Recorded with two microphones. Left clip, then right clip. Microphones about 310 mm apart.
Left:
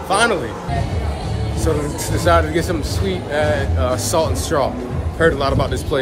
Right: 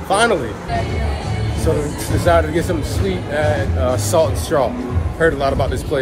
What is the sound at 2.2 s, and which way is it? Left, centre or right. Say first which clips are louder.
Speech: right 1 dB; centre.